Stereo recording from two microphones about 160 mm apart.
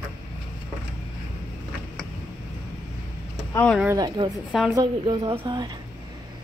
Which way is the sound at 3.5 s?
10° left (ahead or behind).